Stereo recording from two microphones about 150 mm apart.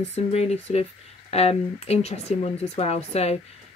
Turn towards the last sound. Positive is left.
turn(degrees=45)  # may be behind; listen again after turning